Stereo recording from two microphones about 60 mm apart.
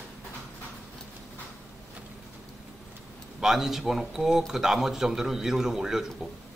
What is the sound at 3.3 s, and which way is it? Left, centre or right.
Speech, centre.